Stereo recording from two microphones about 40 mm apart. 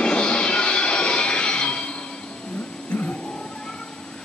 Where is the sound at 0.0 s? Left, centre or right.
Left.